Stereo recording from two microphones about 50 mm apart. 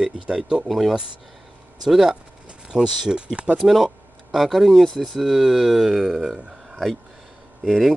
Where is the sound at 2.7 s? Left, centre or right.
Centre.